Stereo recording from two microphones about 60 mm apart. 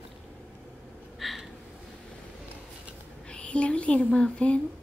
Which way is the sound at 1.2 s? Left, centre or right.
Centre.